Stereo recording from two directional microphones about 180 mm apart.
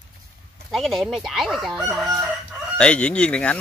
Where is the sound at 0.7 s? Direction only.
Centre (ahead or behind).